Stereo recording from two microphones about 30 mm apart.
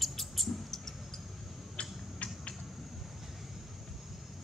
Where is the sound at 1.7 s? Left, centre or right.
Left.